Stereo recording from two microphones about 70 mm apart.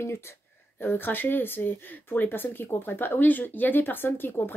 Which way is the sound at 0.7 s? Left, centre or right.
Left.